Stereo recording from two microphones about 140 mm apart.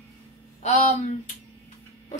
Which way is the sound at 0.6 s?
55° left (ahead or behind).